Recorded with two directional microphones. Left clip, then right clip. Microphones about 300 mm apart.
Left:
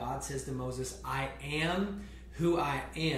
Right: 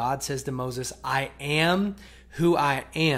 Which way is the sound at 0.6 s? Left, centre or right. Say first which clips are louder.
Right 7 dB; right.